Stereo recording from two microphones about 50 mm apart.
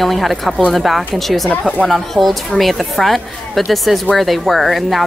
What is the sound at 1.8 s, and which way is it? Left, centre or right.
A woman's voice, centre.